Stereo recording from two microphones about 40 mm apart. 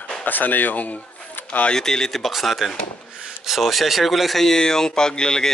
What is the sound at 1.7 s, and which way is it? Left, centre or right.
Speech, centre.